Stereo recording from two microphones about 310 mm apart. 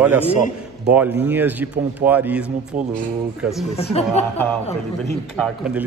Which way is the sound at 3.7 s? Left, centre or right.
Centre.